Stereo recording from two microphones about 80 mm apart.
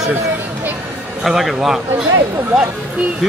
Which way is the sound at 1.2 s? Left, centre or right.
Centre.